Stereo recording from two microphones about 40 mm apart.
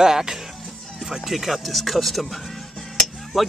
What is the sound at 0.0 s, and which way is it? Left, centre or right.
Speech, centre.